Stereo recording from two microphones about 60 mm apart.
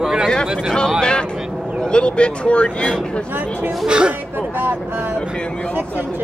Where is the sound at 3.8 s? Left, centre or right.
Centre.